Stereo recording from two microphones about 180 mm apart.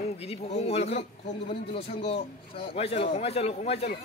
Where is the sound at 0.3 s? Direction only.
35° left (ahead or behind).